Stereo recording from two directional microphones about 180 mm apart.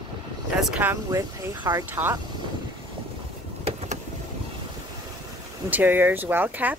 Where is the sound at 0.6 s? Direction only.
10° right (ahead or behind).